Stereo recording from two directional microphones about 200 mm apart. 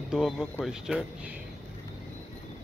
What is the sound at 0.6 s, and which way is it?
Speech, 5° right (ahead or behind).